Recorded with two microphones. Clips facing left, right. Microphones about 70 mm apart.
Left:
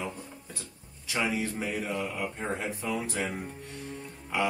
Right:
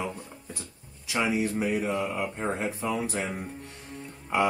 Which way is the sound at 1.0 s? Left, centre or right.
Right.